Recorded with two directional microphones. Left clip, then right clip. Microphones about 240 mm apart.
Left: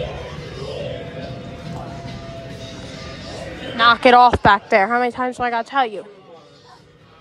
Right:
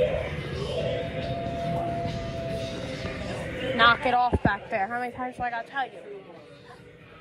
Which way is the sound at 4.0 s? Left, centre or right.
Left.